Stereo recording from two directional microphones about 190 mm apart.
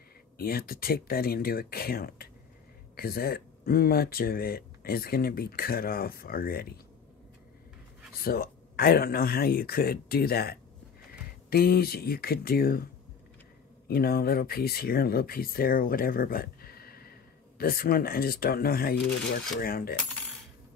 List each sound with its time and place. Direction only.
0.4 s speech: 50° left (ahead or behind)
8.2 s speech: 50° left (ahead or behind)
13.8 s speech: 55° left (ahead or behind)